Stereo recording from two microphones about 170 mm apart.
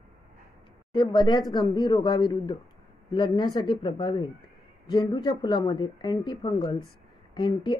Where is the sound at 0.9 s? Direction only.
25° left (ahead or behind).